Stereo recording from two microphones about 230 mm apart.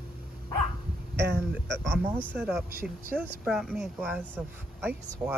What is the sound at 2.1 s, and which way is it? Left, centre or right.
Speech, centre.